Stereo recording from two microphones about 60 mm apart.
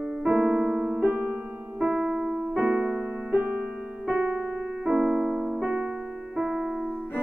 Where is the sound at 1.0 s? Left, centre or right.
Right.